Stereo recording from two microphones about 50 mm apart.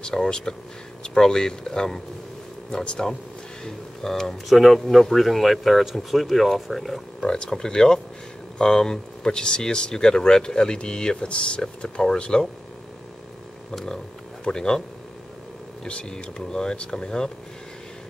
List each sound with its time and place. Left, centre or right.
0.0 s speech: centre
7.2 s speech: centre
13.7 s speech: centre
15.8 s speech: centre